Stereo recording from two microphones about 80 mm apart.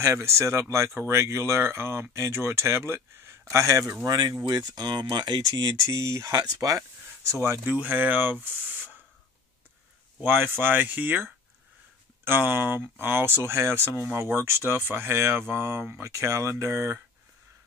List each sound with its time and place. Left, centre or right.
0.0 s speech: right
4.5 s speech: right
5.8 s speech: right
7.2 s speech: right
7.8 s speech: right
10.2 s speech: right
12.3 s speech: right